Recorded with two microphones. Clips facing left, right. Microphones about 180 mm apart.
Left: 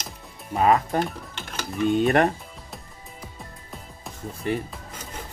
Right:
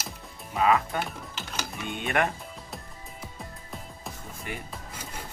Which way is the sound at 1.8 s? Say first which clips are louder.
Left 9 dB; 35° left (ahead or behind).